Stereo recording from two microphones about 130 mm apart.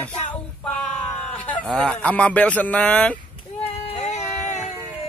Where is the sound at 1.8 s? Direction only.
10° left (ahead or behind).